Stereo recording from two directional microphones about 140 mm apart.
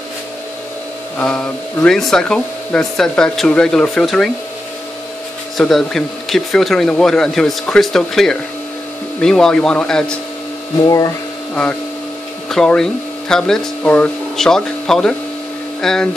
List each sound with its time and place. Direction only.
1.1 s speech: 10° left (ahead or behind)
5.6 s speech: centre (ahead or behind)
10.8 s speech: 25° left (ahead or behind)
12.4 s speech: 5° left (ahead or behind)